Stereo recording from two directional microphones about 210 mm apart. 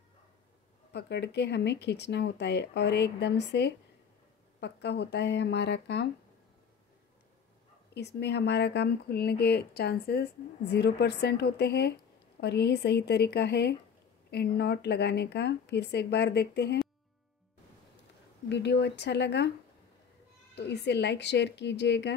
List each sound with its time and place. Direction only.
0.9 s a woman's voice: 55° left (ahead or behind)
7.9 s speech: 55° left (ahead or behind)
18.5 s a woman's voice: 55° left (ahead or behind)
20.5 s a woman's voice: 55° left (ahead or behind)